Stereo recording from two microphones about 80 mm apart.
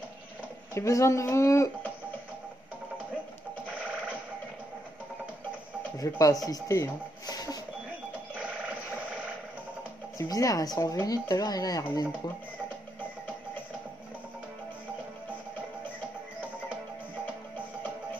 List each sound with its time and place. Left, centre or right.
0.7 s speech: left
5.9 s speech: left
10.1 s speech: left